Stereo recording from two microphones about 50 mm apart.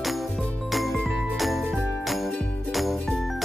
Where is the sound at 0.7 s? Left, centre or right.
Centre.